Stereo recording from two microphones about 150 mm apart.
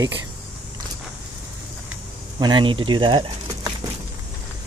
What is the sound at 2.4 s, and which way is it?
Speech, 30° right (ahead or behind).